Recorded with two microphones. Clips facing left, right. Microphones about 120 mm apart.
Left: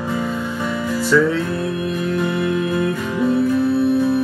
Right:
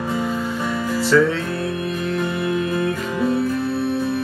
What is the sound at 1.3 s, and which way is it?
Music, 20° left (ahead or behind).